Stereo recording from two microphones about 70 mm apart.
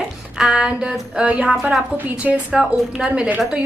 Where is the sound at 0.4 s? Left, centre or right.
Centre.